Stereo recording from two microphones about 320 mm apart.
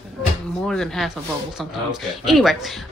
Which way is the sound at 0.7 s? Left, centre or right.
Centre.